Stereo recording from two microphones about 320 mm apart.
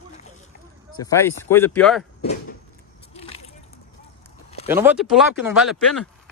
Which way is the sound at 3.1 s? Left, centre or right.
Centre.